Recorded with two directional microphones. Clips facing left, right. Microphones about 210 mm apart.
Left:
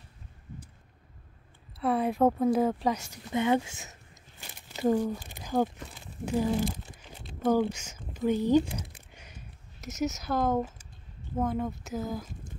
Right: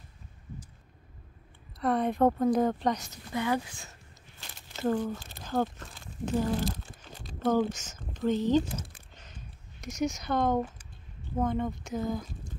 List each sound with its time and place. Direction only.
1.8 s speech: 5° left (ahead or behind)
3.3 s speech: 25° left (ahead or behind)
4.4 s a sound: 10° left (ahead or behind)
7.5 s speech: 10° left (ahead or behind)